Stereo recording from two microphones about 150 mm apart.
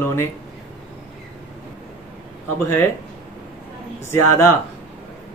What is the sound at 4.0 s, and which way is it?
Speech, 20° left (ahead or behind).